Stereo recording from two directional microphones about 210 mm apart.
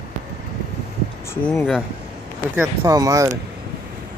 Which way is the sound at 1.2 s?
10° left (ahead or behind).